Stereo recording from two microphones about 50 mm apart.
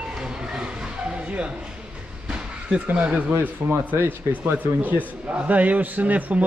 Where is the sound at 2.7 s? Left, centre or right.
Right.